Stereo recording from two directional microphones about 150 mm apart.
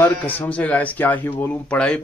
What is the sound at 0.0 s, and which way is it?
Speech, 10° left (ahead or behind).